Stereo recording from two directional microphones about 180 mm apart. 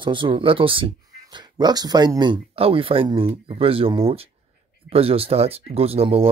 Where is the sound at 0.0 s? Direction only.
30° right (ahead or behind).